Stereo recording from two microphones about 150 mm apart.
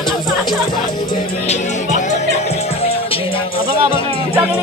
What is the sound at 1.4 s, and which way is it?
Speech, 50° left (ahead or behind).